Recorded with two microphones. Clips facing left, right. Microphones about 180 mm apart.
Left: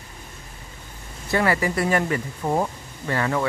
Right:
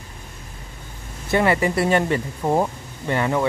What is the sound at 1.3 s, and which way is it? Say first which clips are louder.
Speech: right 3 dB; 25° right (ahead or behind).